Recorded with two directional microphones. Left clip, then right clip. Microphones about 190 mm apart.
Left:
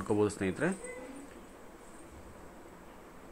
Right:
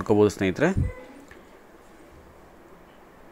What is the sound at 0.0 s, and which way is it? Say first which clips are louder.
Speech: right 10 dB; 25° right (ahead or behind).